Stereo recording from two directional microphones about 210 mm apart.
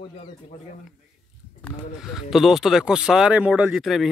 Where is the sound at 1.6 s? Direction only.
Centre (ahead or behind).